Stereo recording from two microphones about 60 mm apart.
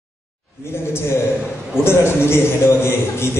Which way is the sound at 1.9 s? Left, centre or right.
Left.